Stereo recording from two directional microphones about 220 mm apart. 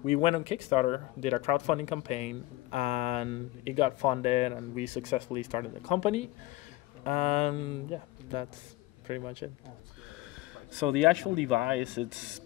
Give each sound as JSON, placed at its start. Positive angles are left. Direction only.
{"t": 0.0, "sound": "speech", "side_deg": 30}
{"t": 9.0, "sound": "speech", "side_deg": 25}
{"t": 11.0, "sound": "speech", "side_deg": 0}